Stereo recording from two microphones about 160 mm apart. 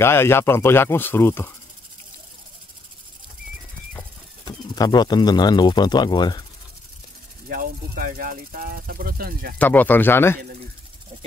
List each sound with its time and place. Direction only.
0.0 s speech: 15° left (ahead or behind)
4.5 s speech: 25° left (ahead or behind)
7.4 s speech: 65° right (ahead or behind)
9.6 s speech: 10° left (ahead or behind)